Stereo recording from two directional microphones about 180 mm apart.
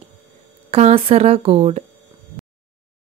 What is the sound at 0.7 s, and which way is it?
Speech, 35° right (ahead or behind).